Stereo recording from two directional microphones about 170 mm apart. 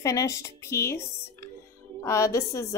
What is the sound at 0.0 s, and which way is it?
A woman's voice, 20° left (ahead or behind).